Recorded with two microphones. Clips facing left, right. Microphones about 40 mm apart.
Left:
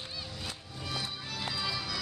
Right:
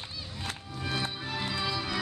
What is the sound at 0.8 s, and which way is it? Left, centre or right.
Music, right.